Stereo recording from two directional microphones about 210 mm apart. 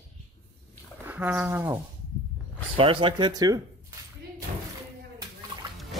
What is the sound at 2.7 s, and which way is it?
Speech, 25° right (ahead or behind).